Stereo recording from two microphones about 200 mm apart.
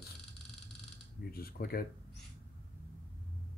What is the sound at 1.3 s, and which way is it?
Speech, 50° left (ahead or behind).